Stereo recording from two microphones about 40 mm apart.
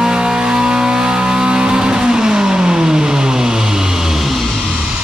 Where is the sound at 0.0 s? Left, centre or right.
Centre.